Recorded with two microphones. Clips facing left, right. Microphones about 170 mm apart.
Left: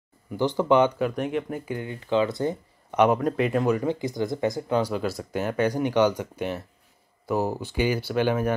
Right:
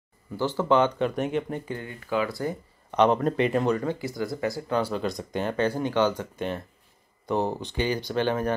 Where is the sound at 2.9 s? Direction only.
10° left (ahead or behind).